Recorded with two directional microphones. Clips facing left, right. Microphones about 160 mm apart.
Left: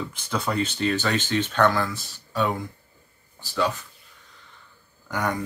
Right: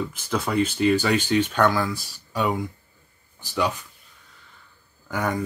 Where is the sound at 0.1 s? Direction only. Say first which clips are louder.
Right 2 dB; 5° right (ahead or behind).